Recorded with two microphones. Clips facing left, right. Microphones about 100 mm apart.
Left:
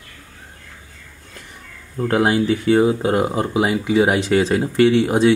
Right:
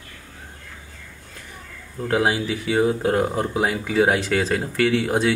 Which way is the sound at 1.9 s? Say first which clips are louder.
Left 3 dB; 35° left (ahead or behind).